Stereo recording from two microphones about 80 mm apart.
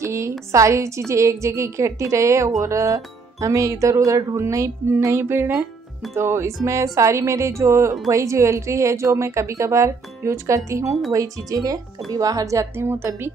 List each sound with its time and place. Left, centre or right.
0.0 s a woman's voice: right
12.8 s a woman's voice: right